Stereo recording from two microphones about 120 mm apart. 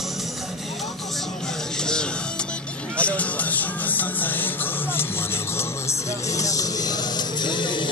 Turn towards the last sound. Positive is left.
turn(degrees=40)  # may be behind; listen again after turning